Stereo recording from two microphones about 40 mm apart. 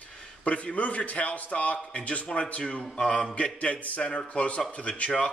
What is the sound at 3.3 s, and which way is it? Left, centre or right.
Speech, left.